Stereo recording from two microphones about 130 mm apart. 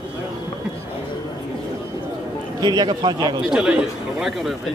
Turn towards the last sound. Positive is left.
turn(degrees=-5)  # may be behind; listen again after turning